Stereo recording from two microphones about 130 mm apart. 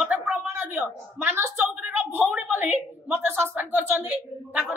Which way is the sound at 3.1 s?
20° right (ahead or behind).